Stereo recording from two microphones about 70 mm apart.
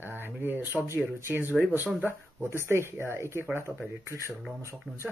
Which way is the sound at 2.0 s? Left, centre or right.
Right.